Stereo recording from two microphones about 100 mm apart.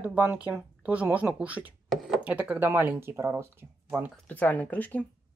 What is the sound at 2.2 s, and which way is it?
Speech, 15° right (ahead or behind).